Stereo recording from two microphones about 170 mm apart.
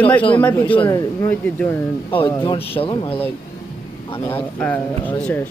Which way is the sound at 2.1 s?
30° left (ahead or behind).